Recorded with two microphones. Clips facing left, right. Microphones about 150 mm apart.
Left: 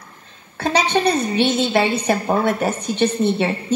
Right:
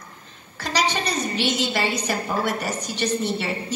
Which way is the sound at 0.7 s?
55° left (ahead or behind).